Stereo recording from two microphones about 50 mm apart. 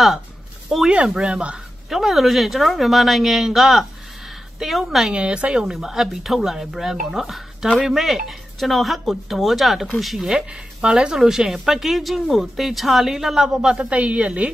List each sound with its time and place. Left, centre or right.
0.8 s a woman's voice: centre
1.9 s speech: centre
5.1 s speech: right; by 10.2 s centre
10.2 s speech: centre
13.5 s a woman's voice: centre